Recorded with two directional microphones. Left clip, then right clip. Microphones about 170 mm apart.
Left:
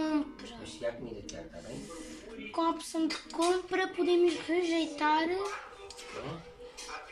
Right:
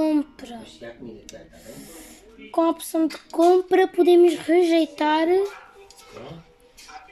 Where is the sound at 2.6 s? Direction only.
50° right (ahead or behind).